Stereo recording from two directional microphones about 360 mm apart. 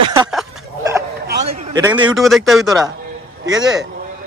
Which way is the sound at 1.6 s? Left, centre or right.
Centre.